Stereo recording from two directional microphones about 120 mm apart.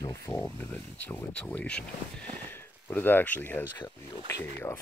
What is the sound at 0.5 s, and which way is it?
Speech, 15° left (ahead or behind).